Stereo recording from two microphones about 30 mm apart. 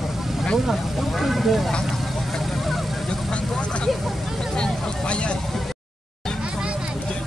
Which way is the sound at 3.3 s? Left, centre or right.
Left.